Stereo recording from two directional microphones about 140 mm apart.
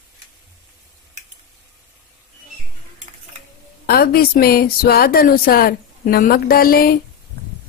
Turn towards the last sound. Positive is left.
turn(degrees=90)